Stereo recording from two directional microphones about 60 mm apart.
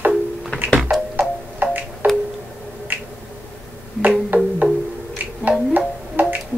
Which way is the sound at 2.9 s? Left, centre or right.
Right.